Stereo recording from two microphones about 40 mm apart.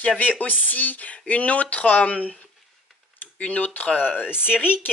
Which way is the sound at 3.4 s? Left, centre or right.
Left.